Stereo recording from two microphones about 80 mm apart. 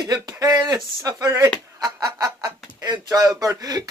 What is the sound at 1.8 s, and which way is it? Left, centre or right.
Speech, right.